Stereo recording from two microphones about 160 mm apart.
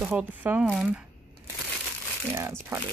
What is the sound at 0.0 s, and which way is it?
Speech, 10° right (ahead or behind).